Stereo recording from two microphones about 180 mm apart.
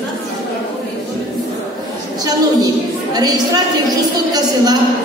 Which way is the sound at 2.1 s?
20° right (ahead or behind).